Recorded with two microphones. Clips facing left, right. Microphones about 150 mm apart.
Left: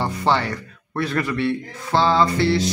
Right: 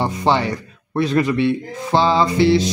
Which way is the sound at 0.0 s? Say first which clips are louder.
Right 3 dB; 15° right (ahead or behind).